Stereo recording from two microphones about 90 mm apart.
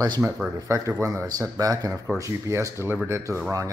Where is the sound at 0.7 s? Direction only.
35° right (ahead or behind).